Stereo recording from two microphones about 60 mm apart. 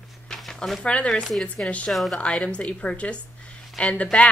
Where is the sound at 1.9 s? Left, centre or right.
Centre.